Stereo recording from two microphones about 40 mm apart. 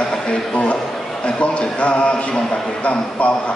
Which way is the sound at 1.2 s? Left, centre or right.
Left.